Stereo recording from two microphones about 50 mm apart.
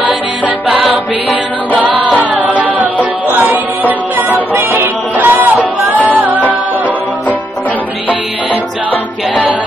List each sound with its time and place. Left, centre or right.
0.7 s music: centre
2.4 s music: right
4.3 s music: right